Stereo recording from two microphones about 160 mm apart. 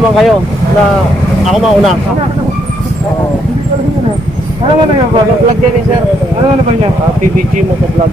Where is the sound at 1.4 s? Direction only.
Centre (ahead or behind).